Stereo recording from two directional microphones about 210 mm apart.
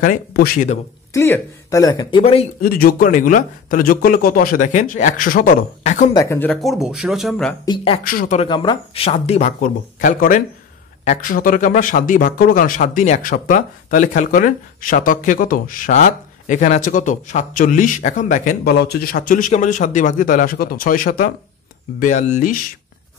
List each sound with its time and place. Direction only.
0.0 s speech: 45° left (ahead or behind)
1.1 s speech: 10° left (ahead or behind)
2.6 s speech: 45° left (ahead or behind)
6.1 s speech: 10° left (ahead or behind)
7.6 s speech: 25° left (ahead or behind)
8.0 s speech: 45° left (ahead or behind)
8.4 s speech: 20° left (ahead or behind); by 22.6 s 35° left (ahead or behind)